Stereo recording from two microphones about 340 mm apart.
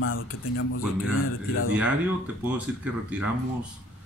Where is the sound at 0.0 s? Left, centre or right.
Left.